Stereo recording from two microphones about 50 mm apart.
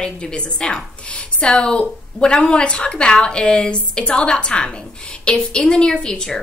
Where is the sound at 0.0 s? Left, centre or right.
Centre.